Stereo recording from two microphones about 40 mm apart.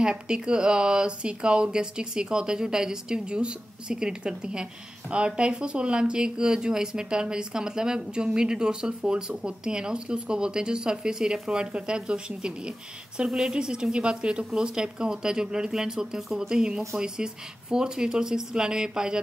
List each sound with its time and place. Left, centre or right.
0.0 s speech: right